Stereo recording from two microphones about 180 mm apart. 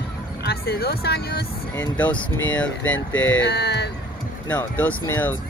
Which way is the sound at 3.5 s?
70° left (ahead or behind).